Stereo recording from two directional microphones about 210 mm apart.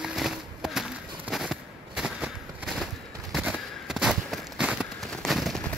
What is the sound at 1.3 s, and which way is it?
Fireworks, centre (ahead or behind).